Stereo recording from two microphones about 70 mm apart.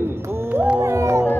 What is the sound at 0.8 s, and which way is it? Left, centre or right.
Speech, right.